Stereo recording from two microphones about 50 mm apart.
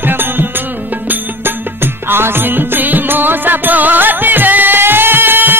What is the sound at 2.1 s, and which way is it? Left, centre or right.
Music, right.